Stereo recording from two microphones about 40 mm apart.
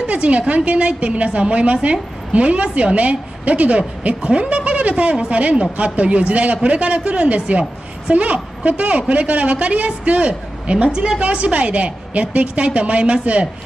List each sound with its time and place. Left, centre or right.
0.0 s a woman's voice: right